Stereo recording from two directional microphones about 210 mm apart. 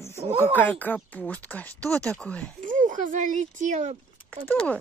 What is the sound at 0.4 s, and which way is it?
Speech, 10° left (ahead or behind).